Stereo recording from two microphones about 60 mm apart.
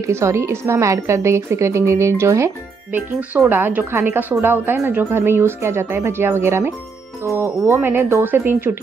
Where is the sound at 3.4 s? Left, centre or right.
Right.